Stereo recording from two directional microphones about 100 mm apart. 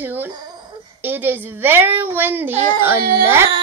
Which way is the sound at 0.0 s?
20° right (ahead or behind).